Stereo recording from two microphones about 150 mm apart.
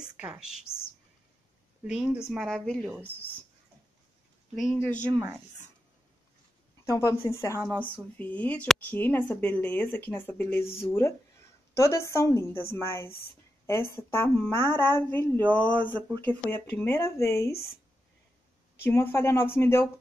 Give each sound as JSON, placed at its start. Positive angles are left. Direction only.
{"t": 0.0, "sound": "speech", "side_deg": -5}
{"t": 1.9, "sound": "speech", "side_deg": -5}
{"t": 4.6, "sound": "speech", "side_deg": 5}
{"t": 5.1, "sound": "speech", "side_deg": -20}
{"t": 6.8, "sound": "a woman's voice", "side_deg": 20}
{"t": 17.5, "sound": "speech", "side_deg": 90}
{"t": 18.9, "sound": "speech", "side_deg": 15}